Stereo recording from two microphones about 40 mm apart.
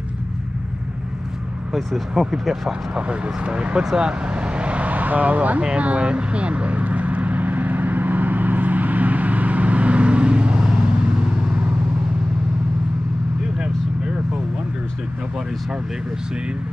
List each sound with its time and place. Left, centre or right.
1.7 s speech: centre
2.9 s speech: right
4.3 s vehicle: right
5.8 s vehicle: right
13.6 s vehicle: right